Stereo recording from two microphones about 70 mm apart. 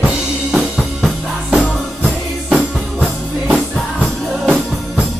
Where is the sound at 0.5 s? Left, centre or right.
Centre.